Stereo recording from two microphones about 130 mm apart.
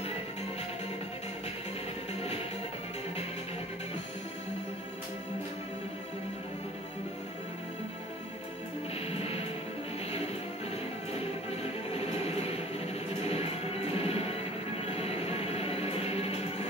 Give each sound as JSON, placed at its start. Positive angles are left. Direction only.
{"t": 9.0, "sound": "music", "side_deg": 50}
{"t": 11.1, "sound": "music", "side_deg": 50}